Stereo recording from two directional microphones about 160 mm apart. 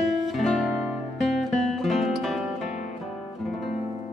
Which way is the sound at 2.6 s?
45° left (ahead or behind).